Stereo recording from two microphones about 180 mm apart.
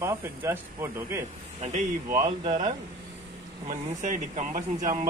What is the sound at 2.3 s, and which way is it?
Speech, 30° right (ahead or behind).